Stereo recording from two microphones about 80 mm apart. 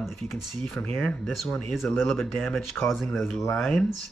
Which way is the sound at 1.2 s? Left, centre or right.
Centre.